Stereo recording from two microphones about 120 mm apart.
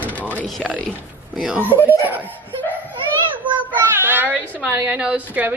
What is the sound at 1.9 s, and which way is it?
Speech, 15° right (ahead or behind).